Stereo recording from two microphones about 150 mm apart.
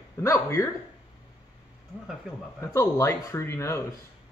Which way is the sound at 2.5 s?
20° left (ahead or behind).